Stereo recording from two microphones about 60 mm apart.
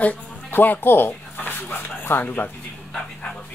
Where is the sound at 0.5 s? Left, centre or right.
Left.